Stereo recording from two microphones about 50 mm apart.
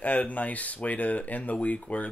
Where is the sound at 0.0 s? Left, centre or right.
Left.